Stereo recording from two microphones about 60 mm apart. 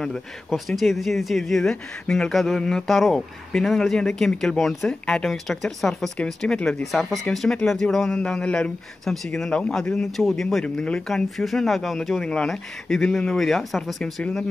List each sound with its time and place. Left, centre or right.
0.5 s speech: centre
6.8 s speech: centre
9.0 s speech: centre